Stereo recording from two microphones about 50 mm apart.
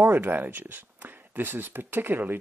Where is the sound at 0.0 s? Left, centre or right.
Right.